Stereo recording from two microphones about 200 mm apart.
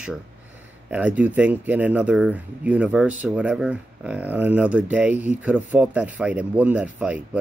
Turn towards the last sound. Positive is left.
turn(degrees=-5)  # may be behind; listen again after turning